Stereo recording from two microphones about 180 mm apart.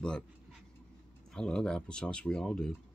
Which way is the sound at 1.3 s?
5° left (ahead or behind).